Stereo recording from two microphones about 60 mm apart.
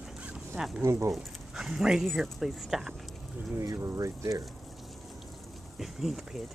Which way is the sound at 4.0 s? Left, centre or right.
Right.